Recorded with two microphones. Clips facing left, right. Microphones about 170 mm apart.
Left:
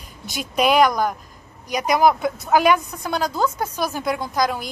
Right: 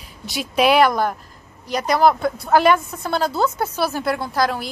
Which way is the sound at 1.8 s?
15° left (ahead or behind).